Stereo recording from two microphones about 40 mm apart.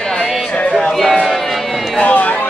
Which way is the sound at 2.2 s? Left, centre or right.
Left.